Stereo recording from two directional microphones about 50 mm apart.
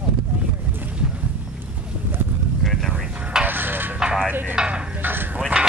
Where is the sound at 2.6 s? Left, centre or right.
Centre.